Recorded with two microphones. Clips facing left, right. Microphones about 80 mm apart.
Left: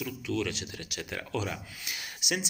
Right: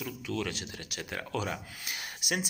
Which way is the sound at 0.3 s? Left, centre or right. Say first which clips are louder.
Left 3 dB; right.